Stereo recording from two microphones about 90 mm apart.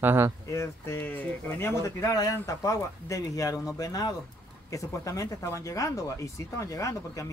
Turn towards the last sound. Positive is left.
turn(degrees=35)  # may be behind; listen again after turning